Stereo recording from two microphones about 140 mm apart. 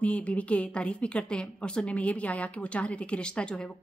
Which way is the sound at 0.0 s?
10° left (ahead or behind).